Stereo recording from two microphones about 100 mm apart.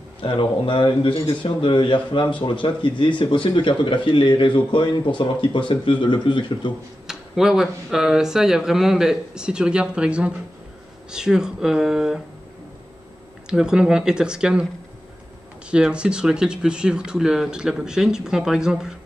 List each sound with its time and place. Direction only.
0.2 s a man's voice: 55° left (ahead or behind)
7.1 s speech: 5° right (ahead or behind)
13.5 s speech: 5° right (ahead or behind)
15.7 s speech: 10° right (ahead or behind)